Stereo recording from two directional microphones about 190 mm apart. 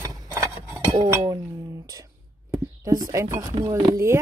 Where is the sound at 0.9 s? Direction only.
20° right (ahead or behind).